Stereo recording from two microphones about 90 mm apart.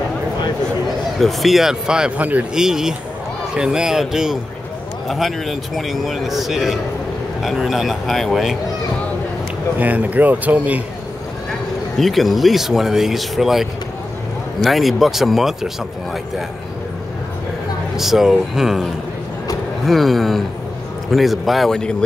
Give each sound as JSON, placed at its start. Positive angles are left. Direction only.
{"t": 1.1, "sound": "speech", "side_deg": 0}
{"t": 2.5, "sound": "speech", "side_deg": -5}
{"t": 9.8, "sound": "speech", "side_deg": -15}
{"t": 12.0, "sound": "speech", "side_deg": 0}
{"t": 17.9, "sound": "speech", "side_deg": -5}
{"t": 19.9, "sound": "speech", "side_deg": 0}